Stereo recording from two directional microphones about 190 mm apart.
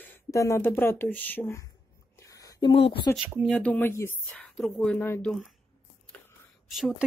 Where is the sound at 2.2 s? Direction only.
15° left (ahead or behind).